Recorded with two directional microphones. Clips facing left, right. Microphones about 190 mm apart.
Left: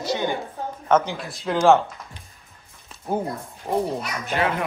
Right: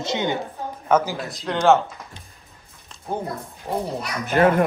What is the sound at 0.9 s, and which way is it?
Speech, 5° right (ahead or behind).